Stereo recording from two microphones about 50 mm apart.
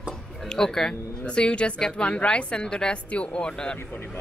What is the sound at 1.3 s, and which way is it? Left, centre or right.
A woman's voice, left.